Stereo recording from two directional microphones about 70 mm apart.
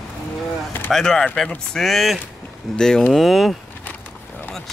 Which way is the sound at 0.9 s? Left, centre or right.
Centre.